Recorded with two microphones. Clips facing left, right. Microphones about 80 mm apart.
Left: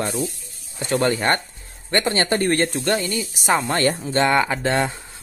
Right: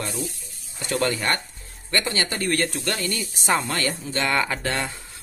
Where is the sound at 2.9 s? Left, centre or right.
Centre.